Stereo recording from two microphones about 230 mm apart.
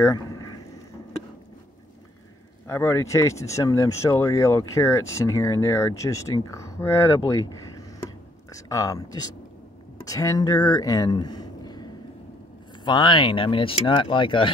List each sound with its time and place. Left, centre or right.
2.6 s speech: centre